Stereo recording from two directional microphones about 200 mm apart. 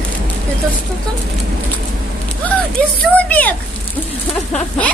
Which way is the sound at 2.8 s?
5° left (ahead or behind).